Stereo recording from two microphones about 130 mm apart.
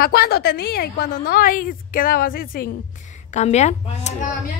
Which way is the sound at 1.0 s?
90° left.